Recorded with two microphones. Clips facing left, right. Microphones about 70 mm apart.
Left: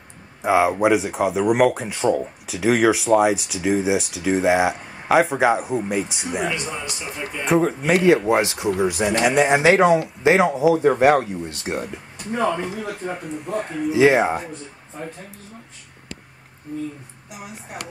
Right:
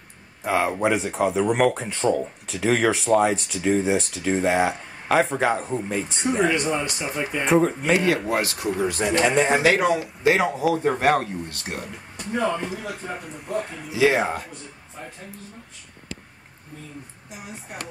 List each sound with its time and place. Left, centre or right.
0.4 s speech: centre
6.5 s a man's voice: right
7.4 s speech: centre
8.0 s speech: left
9.5 s speech: centre
13.5 s speech: left